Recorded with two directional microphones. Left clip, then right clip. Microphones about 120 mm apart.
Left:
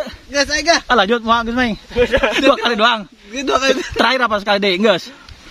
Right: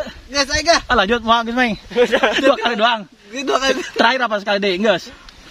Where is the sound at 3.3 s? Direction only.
60° left (ahead or behind).